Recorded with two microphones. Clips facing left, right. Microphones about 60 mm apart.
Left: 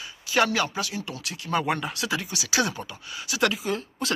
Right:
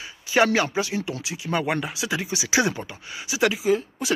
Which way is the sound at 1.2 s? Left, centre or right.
Centre.